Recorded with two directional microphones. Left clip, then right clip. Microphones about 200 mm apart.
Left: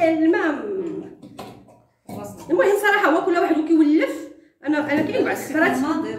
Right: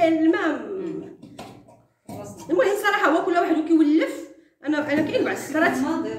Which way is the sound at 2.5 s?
10° right (ahead or behind).